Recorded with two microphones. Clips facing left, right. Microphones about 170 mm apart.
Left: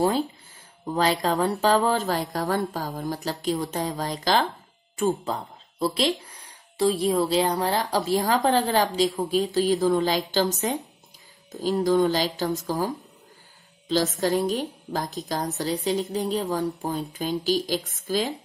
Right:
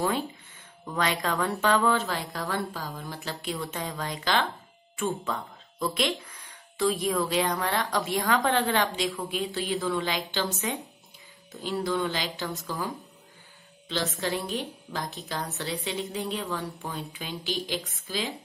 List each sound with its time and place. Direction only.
0.8 s speech: 35° left (ahead or behind)